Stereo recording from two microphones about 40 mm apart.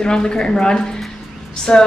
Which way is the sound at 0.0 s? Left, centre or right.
Centre.